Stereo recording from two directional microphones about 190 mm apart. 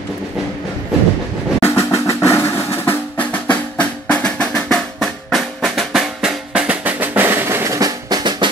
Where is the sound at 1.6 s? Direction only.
15° left (ahead or behind).